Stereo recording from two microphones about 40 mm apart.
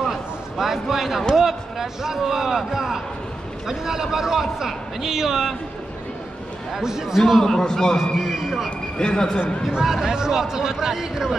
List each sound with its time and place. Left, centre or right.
0.0 s a sound: centre
1.3 s a man's voice: centre
6.7 s a man's voice: centre
7.4 s a man's voice: centre
8.2 s a sound: centre
8.6 s speech: left
9.7 s a man's voice: centre